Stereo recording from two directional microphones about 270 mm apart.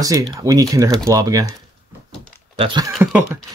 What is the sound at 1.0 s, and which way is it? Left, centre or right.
Speech, centre.